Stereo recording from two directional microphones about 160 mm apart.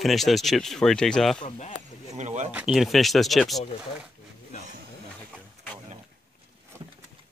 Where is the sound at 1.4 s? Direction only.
50° left (ahead or behind).